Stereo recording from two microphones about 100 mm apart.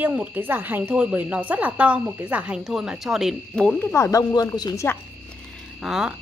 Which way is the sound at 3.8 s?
20° left (ahead or behind).